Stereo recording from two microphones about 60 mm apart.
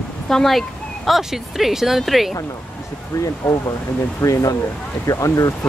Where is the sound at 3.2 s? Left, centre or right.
Left.